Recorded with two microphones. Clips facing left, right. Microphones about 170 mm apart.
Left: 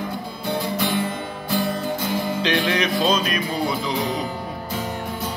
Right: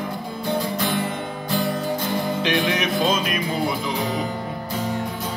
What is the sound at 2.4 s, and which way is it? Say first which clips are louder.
Music: left 2 dB; 15° right (ahead or behind).